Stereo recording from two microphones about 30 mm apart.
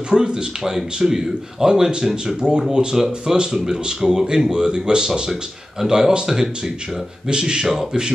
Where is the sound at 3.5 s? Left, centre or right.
Centre.